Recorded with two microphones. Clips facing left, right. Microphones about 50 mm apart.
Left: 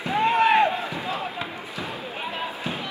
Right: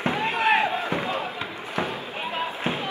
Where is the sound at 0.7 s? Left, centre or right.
Right.